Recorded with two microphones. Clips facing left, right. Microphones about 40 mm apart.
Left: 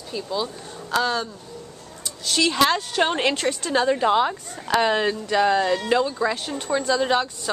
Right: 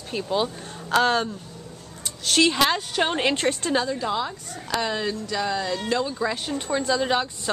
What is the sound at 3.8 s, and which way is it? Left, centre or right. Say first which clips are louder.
Speech: left 7 dB; left.